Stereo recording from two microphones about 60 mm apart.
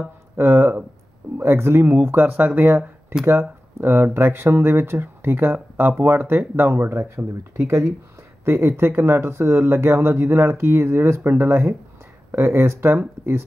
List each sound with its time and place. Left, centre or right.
0.4 s speech: right
3.3 s speech: right
6.7 s speech: right